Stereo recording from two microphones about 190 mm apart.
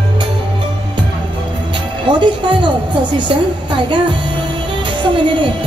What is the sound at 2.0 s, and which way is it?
Speech, 25° right (ahead or behind).